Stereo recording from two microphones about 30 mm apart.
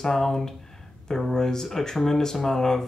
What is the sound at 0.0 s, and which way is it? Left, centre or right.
Speech, centre.